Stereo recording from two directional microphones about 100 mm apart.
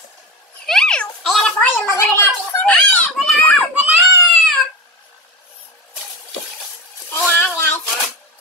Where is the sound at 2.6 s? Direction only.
15° left (ahead or behind).